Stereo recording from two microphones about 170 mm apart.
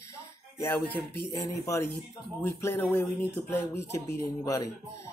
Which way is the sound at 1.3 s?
20° left (ahead or behind).